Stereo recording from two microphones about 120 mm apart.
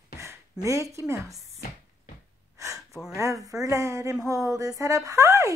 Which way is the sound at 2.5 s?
25° right (ahead or behind).